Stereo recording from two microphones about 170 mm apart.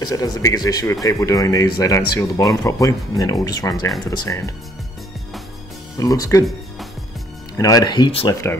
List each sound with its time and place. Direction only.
0.0 s speech: 20° left (ahead or behind)
5.9 s speech: 20° left (ahead or behind)
7.5 s speech: 20° left (ahead or behind)
8.3 s speech: 20° left (ahead or behind)